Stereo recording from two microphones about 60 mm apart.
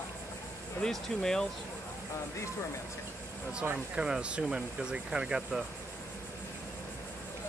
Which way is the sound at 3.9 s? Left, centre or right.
Centre.